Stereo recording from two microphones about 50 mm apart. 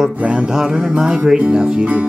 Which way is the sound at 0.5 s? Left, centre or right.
Centre.